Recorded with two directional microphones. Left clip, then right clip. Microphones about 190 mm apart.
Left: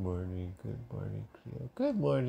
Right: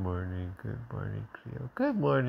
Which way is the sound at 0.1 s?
15° right (ahead or behind).